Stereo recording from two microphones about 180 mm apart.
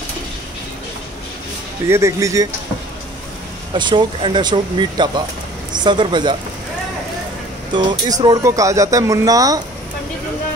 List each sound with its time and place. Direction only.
1.9 s speech: 15° right (ahead or behind)
3.7 s speech: 25° right (ahead or behind)
7.7 s speech: 25° right (ahead or behind)